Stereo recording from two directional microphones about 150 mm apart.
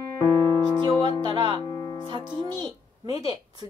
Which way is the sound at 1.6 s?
25° left (ahead or behind).